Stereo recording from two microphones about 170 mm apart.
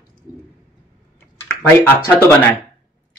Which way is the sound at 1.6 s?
15° left (ahead or behind).